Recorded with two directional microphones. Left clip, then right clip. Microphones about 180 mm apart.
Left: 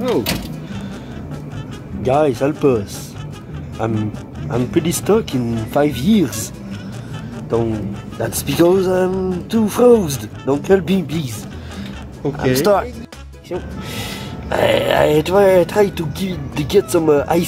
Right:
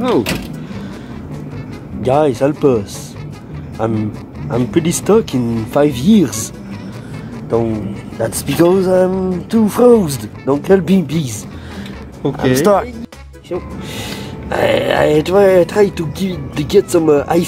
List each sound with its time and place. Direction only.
2.0 s speech: 10° right (ahead or behind)
8.2 s speech: 10° right (ahead or behind)
12.2 s speech: 45° right (ahead or behind)
12.6 s speech: 10° right (ahead or behind)
13.5 s speech: centre (ahead or behind)